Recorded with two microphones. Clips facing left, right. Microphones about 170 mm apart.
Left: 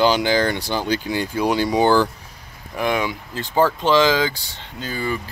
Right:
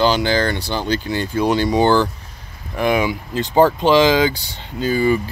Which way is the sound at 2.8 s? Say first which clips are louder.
Right 4 dB; 5° right (ahead or behind).